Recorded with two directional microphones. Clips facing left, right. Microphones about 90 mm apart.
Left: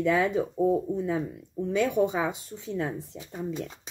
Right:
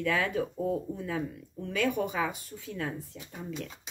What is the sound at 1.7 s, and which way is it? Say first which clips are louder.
Speech: left 4 dB; 20° left (ahead or behind).